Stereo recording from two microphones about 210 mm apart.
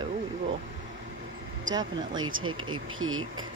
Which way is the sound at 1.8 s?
65° right (ahead or behind).